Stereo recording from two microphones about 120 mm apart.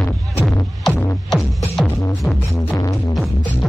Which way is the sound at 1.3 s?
Centre (ahead or behind).